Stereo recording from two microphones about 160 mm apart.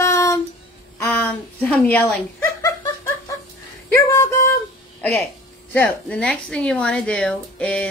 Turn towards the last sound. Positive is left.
turn(degrees=5)  # may be behind; listen again after turning